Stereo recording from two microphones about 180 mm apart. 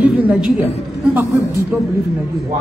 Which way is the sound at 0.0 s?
5° right (ahead or behind).